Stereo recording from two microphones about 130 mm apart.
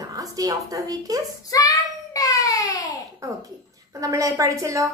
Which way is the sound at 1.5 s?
25° left (ahead or behind).